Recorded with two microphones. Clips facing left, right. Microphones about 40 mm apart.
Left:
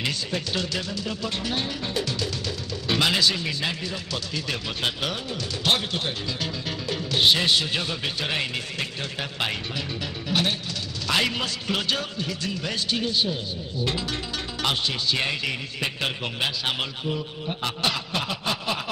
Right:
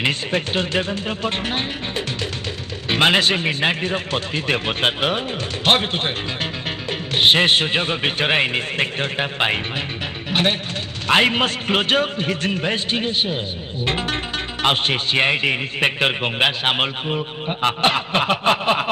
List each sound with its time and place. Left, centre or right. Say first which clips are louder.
0.0 s speech: right 7 dB; right